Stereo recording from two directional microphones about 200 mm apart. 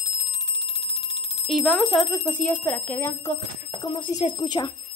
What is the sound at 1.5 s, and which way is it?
Speech, 5° right (ahead or behind).